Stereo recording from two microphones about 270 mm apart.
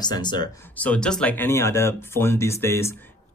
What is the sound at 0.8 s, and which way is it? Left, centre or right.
Speech, centre.